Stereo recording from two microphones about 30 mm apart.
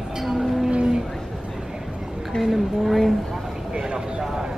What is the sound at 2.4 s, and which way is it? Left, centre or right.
Speech, centre.